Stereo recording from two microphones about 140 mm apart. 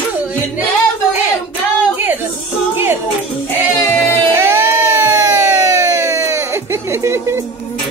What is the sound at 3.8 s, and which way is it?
Music, 15° left (ahead or behind).